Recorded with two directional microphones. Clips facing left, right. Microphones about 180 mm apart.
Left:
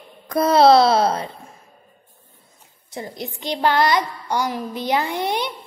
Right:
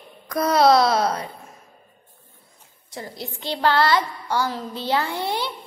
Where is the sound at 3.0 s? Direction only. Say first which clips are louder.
Left 3 dB; 20° left (ahead or behind).